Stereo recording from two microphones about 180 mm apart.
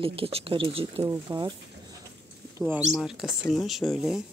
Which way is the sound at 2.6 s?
5° right (ahead or behind).